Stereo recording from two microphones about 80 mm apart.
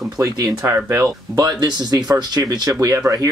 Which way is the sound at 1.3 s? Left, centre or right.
Right.